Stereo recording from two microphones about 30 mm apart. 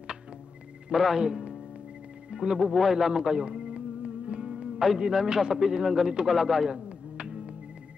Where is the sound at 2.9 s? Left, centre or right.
Centre.